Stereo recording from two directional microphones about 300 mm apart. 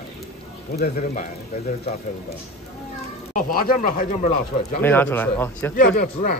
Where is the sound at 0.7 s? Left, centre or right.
Left.